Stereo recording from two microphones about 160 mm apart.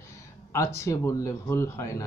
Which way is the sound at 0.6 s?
15° left (ahead or behind).